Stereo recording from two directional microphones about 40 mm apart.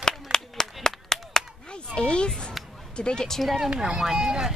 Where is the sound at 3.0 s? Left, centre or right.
Left.